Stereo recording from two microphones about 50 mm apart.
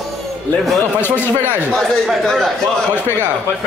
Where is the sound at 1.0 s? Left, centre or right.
Left.